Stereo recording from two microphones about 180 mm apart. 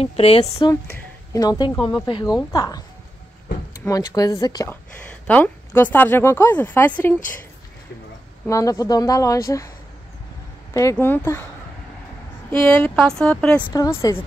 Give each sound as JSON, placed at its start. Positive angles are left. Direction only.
{"t": 0.0, "sound": "speech", "side_deg": 35}
{"t": 0.7, "sound": "speech", "side_deg": 15}
{"t": 3.8, "sound": "speech", "side_deg": 20}
{"t": 5.2, "sound": "speech", "side_deg": 10}
{"t": 8.5, "sound": "speech", "side_deg": 20}
{"t": 10.7, "sound": "speech", "side_deg": 15}
{"t": 12.8, "sound": "speech", "side_deg": 5}
{"t": 13.7, "sound": "speech", "side_deg": 20}